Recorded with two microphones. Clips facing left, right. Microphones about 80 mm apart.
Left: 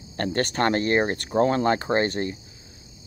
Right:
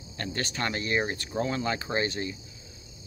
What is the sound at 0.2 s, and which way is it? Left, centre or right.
Speech, left.